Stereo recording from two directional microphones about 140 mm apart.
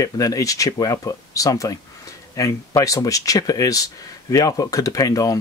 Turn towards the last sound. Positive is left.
turn(degrees=25)  # may be behind; listen again after turning